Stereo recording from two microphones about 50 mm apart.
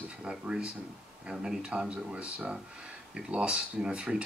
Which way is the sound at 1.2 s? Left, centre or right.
Centre.